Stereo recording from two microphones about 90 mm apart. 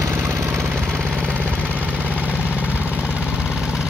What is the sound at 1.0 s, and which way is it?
Vehicle, 5° left (ahead or behind).